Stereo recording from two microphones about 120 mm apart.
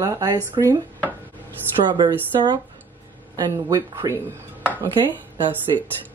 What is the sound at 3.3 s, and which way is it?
Speech, 35° right (ahead or behind).